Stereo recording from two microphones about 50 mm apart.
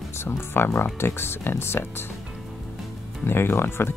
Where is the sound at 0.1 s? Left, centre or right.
Left.